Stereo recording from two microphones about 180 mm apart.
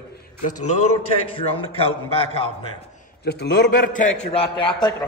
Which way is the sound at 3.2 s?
65° left (ahead or behind).